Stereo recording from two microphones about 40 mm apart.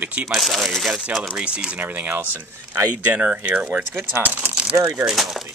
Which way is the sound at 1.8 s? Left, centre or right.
Right.